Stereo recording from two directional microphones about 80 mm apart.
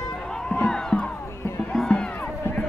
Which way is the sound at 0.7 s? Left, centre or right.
Centre.